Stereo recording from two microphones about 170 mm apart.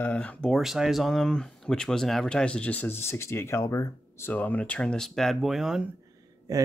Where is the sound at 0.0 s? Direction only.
5° left (ahead or behind).